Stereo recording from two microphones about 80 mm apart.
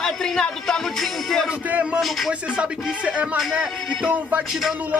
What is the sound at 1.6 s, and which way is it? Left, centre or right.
Music, centre.